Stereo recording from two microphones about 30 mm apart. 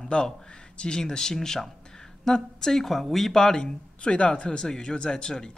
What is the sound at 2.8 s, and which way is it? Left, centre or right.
Speech, centre.